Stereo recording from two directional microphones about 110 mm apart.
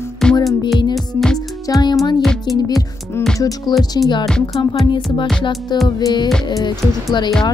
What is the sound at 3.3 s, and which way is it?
Speech, 30° left (ahead or behind).